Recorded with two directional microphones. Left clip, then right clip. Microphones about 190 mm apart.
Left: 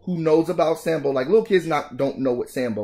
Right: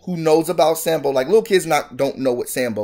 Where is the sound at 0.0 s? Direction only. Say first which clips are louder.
Right 3 dB; centre (ahead or behind).